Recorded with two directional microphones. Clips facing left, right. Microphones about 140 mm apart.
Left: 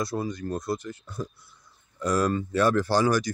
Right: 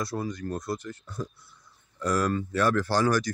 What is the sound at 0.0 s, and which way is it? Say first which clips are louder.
Speech: left 2 dB; 20° left (ahead or behind).